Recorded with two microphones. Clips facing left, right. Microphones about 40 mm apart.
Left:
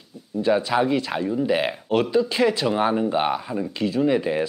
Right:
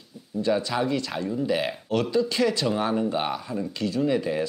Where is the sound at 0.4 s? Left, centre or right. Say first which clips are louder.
Left 4 dB; left.